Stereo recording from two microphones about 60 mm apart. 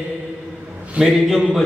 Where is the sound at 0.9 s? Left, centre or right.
Centre.